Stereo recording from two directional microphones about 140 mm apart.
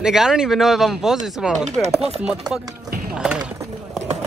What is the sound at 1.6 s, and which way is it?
Speech, 55° right (ahead or behind).